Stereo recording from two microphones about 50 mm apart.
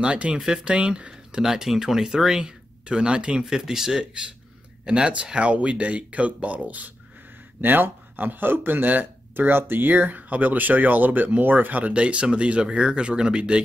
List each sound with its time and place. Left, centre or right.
0.0 s speech: right
11.9 s speech: right